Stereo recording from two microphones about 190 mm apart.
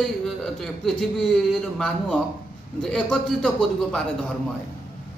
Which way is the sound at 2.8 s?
5° left (ahead or behind).